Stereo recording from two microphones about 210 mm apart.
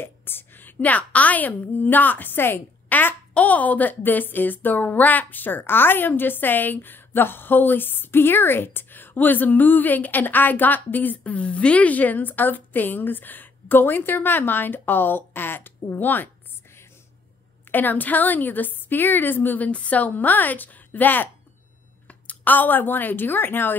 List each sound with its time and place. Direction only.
0.0 s a woman's voice: 10° left (ahead or behind)
17.6 s a woman's voice: 10° left (ahead or behind)